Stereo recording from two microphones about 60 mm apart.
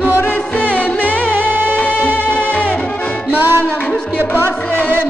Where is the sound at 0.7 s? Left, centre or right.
Left.